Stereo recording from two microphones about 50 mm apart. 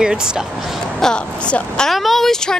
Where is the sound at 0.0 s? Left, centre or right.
Centre.